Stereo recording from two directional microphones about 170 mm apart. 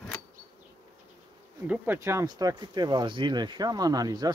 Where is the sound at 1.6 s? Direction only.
10° right (ahead or behind).